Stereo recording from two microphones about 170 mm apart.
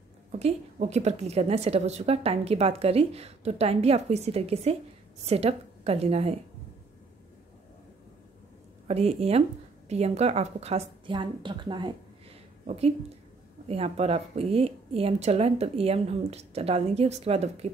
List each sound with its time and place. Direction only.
0.3 s a woman's voice: 40° right (ahead or behind)
8.8 s a woman's voice: 40° right (ahead or behind)